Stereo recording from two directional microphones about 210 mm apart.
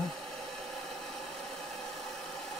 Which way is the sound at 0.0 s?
Centre (ahead or behind).